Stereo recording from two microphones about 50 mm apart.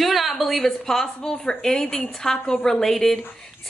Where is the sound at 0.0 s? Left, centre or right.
Centre.